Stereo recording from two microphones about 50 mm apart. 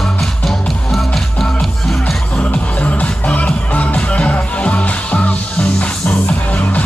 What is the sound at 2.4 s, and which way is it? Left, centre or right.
Music, left.